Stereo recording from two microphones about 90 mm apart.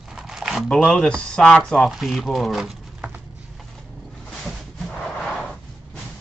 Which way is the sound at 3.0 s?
15° right (ahead or behind).